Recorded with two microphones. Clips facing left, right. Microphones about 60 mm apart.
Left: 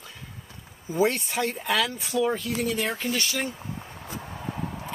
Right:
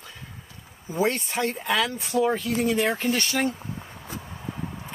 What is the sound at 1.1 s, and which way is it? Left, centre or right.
Speech, right.